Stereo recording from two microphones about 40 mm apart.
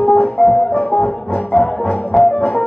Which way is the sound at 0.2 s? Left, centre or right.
Centre.